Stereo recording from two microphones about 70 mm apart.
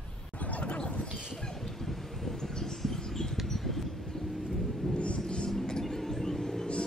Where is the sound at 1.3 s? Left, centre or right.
Centre.